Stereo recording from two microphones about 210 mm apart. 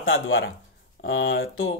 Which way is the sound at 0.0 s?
70° left (ahead or behind).